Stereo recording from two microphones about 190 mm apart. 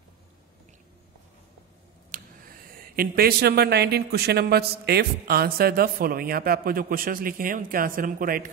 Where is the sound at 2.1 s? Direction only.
50° right (ahead or behind).